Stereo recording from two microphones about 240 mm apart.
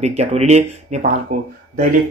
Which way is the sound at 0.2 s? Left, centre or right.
Right.